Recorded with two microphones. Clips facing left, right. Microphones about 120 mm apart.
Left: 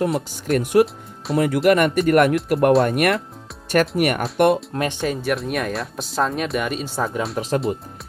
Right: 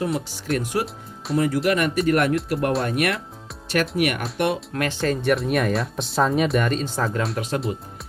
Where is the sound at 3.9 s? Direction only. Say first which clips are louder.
Left 3 dB; 45° left (ahead or behind).